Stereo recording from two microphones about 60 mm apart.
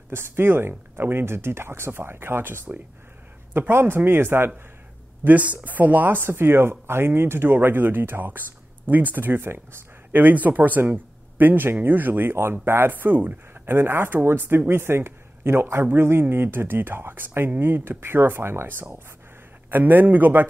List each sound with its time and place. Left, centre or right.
0.1 s speech: right
5.2 s speech: right
10.2 s speech: right
19.7 s speech: right